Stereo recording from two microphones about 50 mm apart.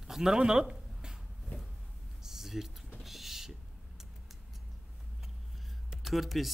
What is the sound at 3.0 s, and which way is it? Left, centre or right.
Owl, centre.